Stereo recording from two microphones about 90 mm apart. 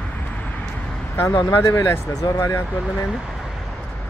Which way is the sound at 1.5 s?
35° left (ahead or behind).